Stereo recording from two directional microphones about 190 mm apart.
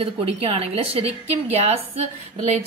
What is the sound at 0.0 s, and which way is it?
A woman's voice, 30° right (ahead or behind).